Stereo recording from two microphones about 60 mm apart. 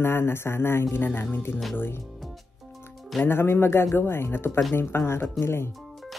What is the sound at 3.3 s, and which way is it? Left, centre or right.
Speech, left.